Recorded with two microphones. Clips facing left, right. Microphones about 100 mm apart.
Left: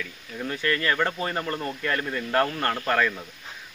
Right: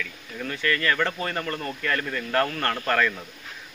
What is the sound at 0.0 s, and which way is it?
Speech, 20° left (ahead or behind).